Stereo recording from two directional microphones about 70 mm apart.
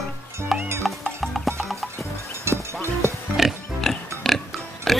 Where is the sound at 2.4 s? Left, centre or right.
Right.